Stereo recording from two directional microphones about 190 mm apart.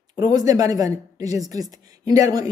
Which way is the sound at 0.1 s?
20° right (ahead or behind).